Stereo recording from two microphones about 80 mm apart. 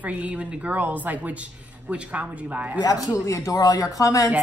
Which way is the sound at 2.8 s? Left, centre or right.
Left.